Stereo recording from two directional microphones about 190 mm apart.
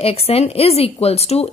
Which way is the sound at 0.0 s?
30° left (ahead or behind).